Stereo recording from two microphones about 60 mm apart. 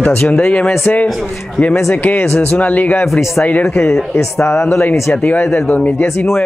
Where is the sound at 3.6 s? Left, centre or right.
Centre.